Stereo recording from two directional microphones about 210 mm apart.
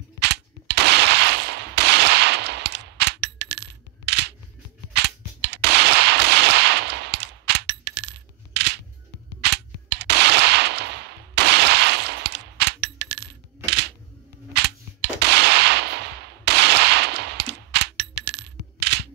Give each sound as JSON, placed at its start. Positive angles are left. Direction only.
{"t": 0.2, "sound": "a sound", "side_deg": -55}
{"t": 4.9, "sound": "cap gun", "side_deg": -55}
{"t": 9.4, "sound": "gunshot", "side_deg": -55}
{"t": 14.5, "sound": "gunshot", "side_deg": -55}